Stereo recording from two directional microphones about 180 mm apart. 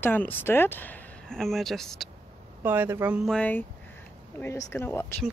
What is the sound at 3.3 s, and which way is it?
Speech, 10° left (ahead or behind).